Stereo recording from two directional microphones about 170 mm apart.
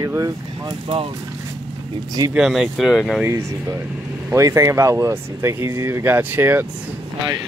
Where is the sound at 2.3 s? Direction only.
Centre (ahead or behind).